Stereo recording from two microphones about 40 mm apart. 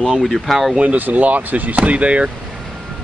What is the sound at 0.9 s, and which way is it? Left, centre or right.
Speech, right.